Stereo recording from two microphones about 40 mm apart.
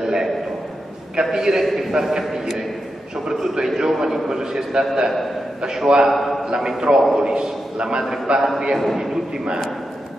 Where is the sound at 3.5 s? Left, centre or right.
Centre.